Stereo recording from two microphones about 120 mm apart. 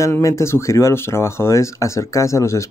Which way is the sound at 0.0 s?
25° left (ahead or behind).